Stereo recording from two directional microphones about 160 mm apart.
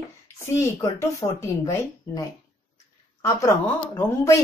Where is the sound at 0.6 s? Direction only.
20° left (ahead or behind).